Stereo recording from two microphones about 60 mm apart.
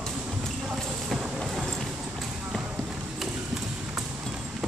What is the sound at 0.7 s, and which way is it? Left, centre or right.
Clip-clop, centre.